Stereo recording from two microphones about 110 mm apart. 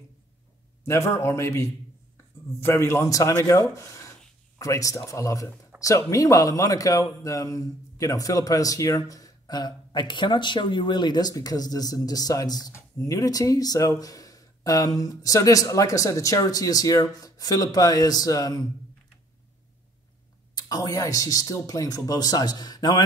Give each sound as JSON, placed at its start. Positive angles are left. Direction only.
{"t": 0.8, "sound": "speech", "side_deg": 25}
{"t": 20.5, "sound": "speech", "side_deg": 35}